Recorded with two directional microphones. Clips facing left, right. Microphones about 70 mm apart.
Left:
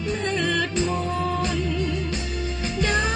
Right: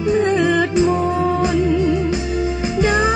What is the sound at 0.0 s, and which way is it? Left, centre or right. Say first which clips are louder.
Music: right 9 dB; centre.